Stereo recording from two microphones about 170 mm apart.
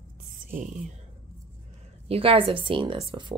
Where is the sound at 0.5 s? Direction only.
55° right (ahead or behind).